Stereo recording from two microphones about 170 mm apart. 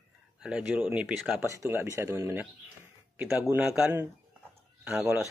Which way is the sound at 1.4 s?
15° right (ahead or behind).